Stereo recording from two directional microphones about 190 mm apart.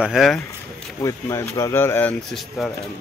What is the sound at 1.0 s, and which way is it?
Speech, 15° left (ahead or behind).